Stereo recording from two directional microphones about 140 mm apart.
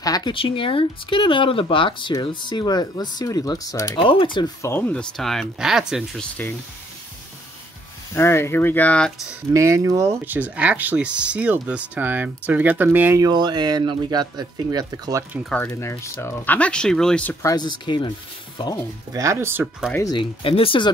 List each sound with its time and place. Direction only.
0.0 s speech: 30° left (ahead or behind)
4.0 s speech: 40° left (ahead or behind)
4.6 s speech: 15° left (ahead or behind)
5.1 s speech: centre (ahead or behind)
8.1 s speech: 15° left (ahead or behind)
9.5 s speech: 20° right (ahead or behind)
13.2 s speech: 30° right (ahead or behind)
15.7 s speech: 20° left (ahead or behind)
17.4 s speech: 25° left (ahead or behind)
19.1 s speech: 20° right (ahead or behind)
20.1 s speech: 35° left (ahead or behind)